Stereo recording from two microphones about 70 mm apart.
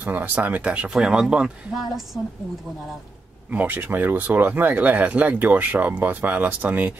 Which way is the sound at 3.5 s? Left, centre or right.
Right.